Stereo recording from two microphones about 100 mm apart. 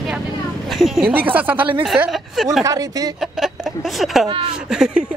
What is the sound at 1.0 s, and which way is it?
Speech, 15° right (ahead or behind).